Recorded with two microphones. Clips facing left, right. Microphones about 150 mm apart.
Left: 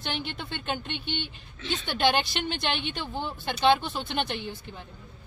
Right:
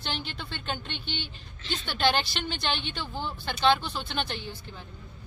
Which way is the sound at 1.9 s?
15° left (ahead or behind).